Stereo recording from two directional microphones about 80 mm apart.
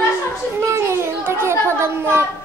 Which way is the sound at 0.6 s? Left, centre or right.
Right.